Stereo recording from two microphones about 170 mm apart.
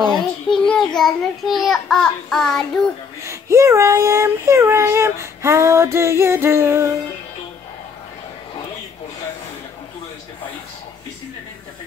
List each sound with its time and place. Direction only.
0.1 s a child's voice: 5° left (ahead or behind)
3.3 s child singing: 15° right (ahead or behind)